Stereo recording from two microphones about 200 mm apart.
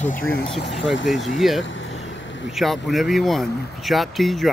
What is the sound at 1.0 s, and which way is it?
Speech, centre (ahead or behind).